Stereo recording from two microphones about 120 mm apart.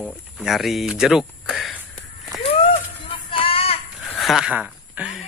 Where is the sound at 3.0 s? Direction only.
50° left (ahead or behind).